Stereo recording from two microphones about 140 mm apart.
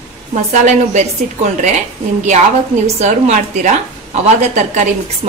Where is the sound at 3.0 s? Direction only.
55° right (ahead or behind).